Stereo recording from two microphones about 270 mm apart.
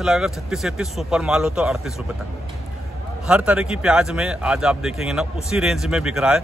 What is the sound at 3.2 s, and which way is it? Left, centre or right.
Speech, centre.